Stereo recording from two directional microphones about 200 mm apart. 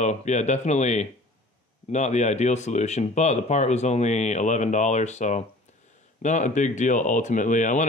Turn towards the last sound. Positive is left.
turn(degrees=40)  # may be behind; listen again after turning